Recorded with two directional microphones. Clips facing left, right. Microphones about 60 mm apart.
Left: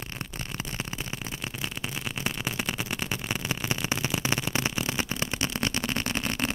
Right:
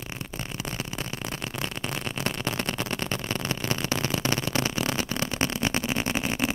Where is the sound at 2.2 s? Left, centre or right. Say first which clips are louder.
Right 2 dB; centre.